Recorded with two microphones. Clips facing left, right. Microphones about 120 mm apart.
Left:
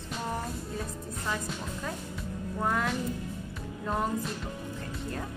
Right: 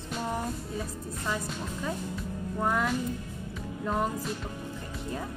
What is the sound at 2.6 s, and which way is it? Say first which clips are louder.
Speech: right 2 dB; 5° right (ahead or behind).